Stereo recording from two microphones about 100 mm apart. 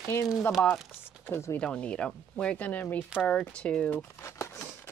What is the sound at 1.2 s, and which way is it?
Speech, 25° left (ahead or behind).